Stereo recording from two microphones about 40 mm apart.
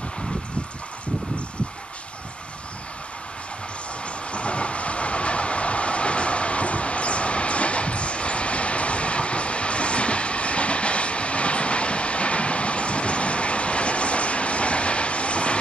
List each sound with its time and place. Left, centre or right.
4.0 s train: left